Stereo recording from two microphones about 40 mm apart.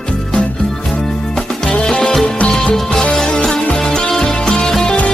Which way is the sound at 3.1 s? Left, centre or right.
Centre.